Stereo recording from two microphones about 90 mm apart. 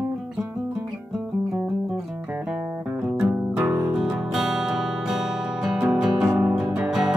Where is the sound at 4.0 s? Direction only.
5° right (ahead or behind).